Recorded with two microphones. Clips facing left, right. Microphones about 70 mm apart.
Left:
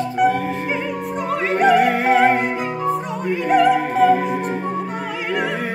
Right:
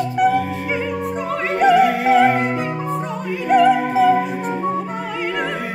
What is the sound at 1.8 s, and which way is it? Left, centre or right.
Music, left.